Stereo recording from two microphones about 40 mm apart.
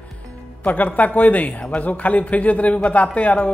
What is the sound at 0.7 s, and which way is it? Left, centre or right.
A man's voice, left.